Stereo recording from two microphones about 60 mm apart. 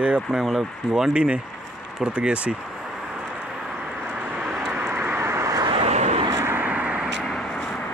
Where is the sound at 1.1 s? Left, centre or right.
Centre.